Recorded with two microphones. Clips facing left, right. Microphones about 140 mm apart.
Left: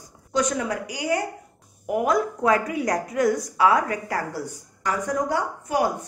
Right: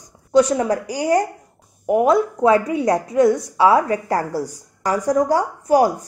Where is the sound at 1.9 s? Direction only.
30° right (ahead or behind).